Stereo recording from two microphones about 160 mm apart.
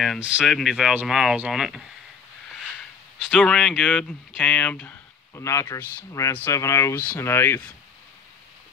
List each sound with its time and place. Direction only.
0.0 s speech: centre (ahead or behind)
3.3 s speech: 5° left (ahead or behind)